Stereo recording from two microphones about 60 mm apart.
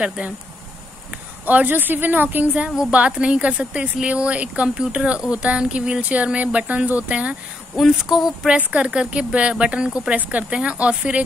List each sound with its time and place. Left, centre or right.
0.0 s speech: centre
1.4 s speech: right
7.7 s speech: centre
8.5 s speech: right